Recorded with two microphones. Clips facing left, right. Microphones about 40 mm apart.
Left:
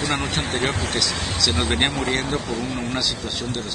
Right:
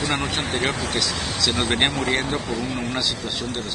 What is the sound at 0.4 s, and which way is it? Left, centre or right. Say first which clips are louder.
Speech: even; right.